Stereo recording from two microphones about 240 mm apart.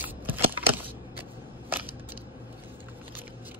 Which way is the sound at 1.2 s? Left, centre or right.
Centre.